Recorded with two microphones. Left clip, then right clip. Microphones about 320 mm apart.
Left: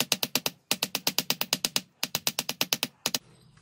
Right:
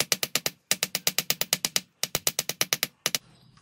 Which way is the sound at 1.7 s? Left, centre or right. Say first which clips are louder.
Right 1 dB; centre.